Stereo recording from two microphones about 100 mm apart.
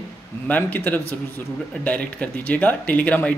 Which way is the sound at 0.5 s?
20° left (ahead or behind).